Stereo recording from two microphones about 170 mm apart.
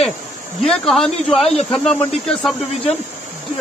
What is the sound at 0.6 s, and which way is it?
Speech, 5° left (ahead or behind).